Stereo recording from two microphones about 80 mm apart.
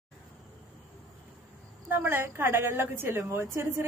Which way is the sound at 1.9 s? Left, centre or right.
Right.